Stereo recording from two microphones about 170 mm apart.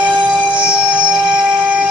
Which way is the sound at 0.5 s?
5° right (ahead or behind).